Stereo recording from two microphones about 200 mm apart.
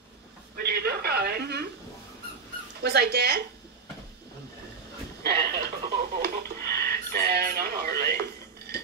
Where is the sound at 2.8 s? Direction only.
50° right (ahead or behind).